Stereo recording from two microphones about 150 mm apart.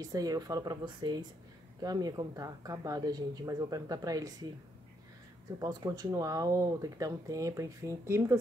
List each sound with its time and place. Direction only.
0.0 s speech: 25° right (ahead or behind)
5.6 s speech: 25° right (ahead or behind)